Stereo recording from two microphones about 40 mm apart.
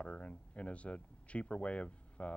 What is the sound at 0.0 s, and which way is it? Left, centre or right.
Speech, left.